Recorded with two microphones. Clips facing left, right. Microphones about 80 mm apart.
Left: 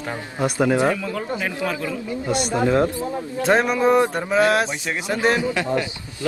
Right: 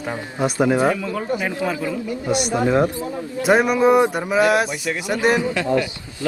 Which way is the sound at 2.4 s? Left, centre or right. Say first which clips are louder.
Left 1 dB; left.